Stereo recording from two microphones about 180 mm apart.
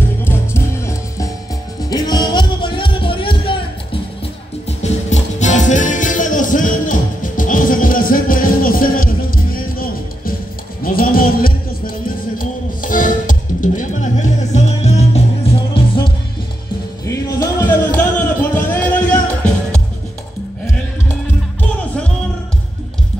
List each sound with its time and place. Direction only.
0.2 s music: 15° left (ahead or behind); by 4.0 s 30° left (ahead or behind)
4.6 s music: 40° left (ahead or behind)
17.0 s music: 20° left (ahead or behind)